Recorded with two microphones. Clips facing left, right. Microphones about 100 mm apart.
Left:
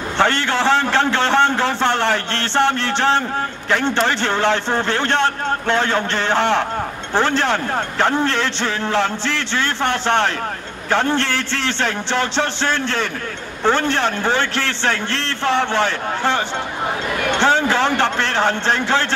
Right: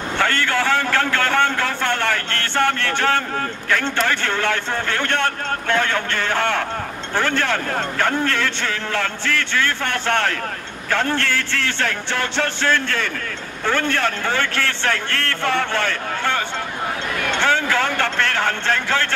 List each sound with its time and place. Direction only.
0.2 s a man's voice: 25° left (ahead or behind)
17.4 s a man's voice: 25° left (ahead or behind)